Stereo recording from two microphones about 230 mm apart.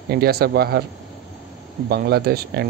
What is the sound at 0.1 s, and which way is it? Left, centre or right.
Speech, right.